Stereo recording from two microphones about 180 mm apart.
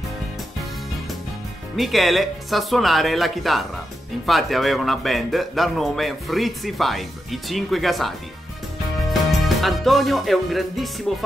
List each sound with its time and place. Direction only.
1.8 s a man's voice: centre (ahead or behind)
9.1 s music: centre (ahead or behind)